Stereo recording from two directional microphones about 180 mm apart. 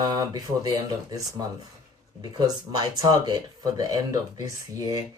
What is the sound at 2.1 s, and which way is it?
Speech, 25° right (ahead or behind).